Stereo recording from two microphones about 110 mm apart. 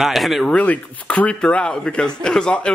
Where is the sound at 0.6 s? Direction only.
15° left (ahead or behind).